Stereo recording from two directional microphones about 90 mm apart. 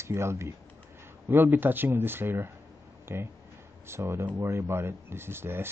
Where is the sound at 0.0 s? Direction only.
30° right (ahead or behind).